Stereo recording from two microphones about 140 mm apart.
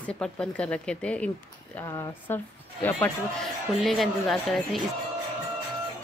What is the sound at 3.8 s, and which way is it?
Speech, centre (ahead or behind).